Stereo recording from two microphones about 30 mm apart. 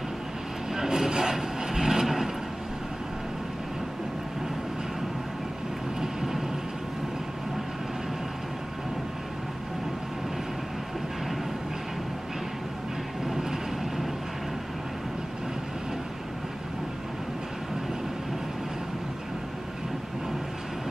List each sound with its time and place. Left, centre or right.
0.7 s vehicle: centre
5.9 s vehicle: centre